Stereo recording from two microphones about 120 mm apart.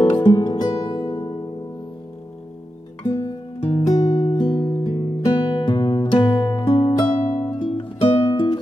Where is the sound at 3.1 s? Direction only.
30° left (ahead or behind).